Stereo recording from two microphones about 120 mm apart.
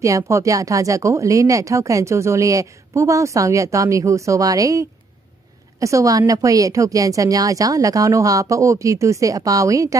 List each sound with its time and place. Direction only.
0.0 s speech: 25° right (ahead or behind)